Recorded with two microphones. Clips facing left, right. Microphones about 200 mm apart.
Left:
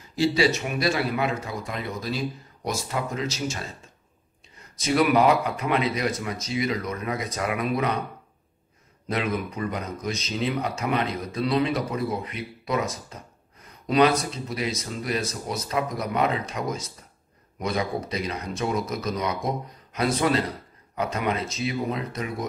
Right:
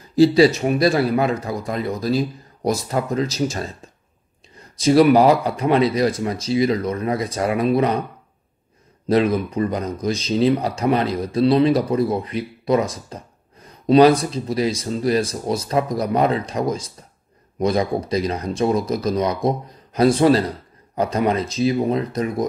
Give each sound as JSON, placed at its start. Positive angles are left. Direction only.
{"t": 0.1, "sound": "speech", "side_deg": -35}
{"t": 4.7, "sound": "speech", "side_deg": -30}
{"t": 9.0, "sound": "speech", "side_deg": -35}